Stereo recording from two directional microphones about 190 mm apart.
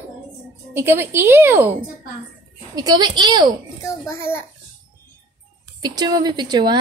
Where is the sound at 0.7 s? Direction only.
10° right (ahead or behind).